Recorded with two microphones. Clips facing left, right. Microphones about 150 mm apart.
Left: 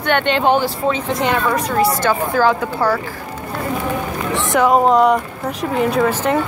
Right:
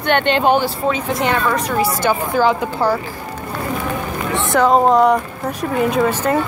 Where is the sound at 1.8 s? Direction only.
20° right (ahead or behind).